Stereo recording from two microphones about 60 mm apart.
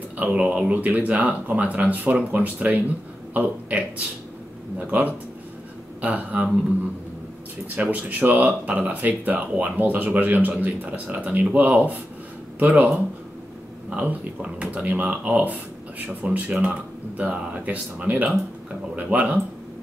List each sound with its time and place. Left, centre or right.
0.2 s speech: right
7.7 s speech: right